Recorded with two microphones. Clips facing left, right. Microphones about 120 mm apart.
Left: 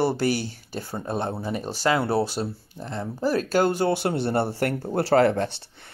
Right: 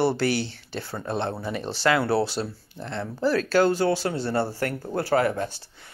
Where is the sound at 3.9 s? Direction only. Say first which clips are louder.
Left 2 dB; 60° left (ahead or behind).